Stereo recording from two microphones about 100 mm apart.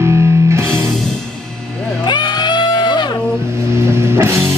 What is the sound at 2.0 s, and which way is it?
Music, 50° left (ahead or behind).